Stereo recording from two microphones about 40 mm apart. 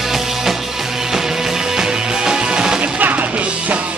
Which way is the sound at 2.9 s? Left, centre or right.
Right.